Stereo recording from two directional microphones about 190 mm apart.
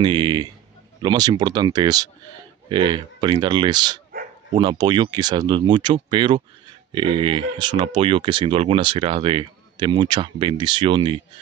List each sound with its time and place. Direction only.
0.0 s a man's voice: 25° right (ahead or behind)